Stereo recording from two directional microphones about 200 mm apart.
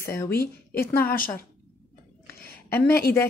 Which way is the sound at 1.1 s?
45° left (ahead or behind).